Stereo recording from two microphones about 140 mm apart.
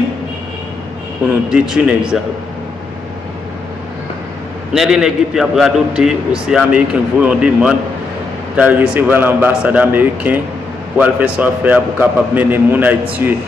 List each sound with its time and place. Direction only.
1.5 s a man's voice: 5° right (ahead or behind)
4.7 s a man's voice: 5° right (ahead or behind)